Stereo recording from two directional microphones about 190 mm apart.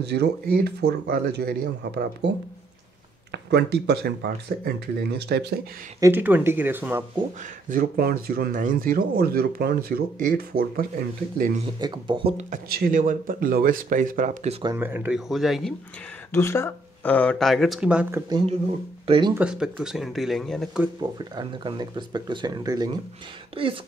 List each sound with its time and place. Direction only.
0.0 s speech: 60° right (ahead or behind)
3.3 s speech: 60° right (ahead or behind)
5.9 s speech: 15° right (ahead or behind)
7.7 s speech: 50° right (ahead or behind)
11.8 s speech: 25° right (ahead or behind)
12.6 s speech: 50° right (ahead or behind)
14.6 s speech: 15° right (ahead or behind)
16.3 s speech: 15° left (ahead or behind); by 18.2 s 5° right (ahead or behind)
19.0 s speech: 25° right (ahead or behind)
19.3 s speech: 5° right (ahead or behind)
21.0 s speech: 20° right (ahead or behind)